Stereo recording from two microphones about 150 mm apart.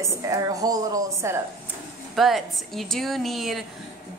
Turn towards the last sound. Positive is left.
turn(degrees=0)  # may be behind; listen again after turning